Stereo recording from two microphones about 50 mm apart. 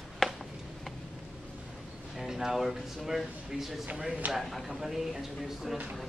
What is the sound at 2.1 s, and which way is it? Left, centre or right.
Speech, centre.